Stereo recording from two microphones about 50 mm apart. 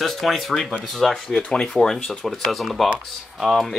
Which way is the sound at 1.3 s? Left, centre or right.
Centre.